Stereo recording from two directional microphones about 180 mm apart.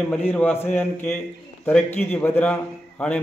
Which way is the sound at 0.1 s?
10° left (ahead or behind).